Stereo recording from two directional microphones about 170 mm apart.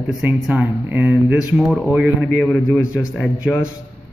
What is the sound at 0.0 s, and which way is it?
A man's voice, 10° right (ahead or behind).